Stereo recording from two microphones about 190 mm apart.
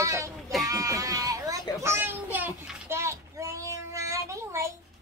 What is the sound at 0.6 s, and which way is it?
Goat, 15° right (ahead or behind).